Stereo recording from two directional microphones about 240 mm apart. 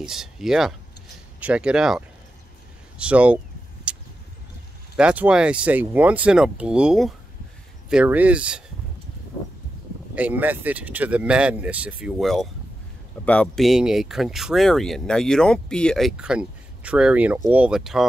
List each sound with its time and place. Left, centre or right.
0.0 s speech: centre
3.9 s vehicle: centre
4.9 s speech: centre
10.1 s speech: centre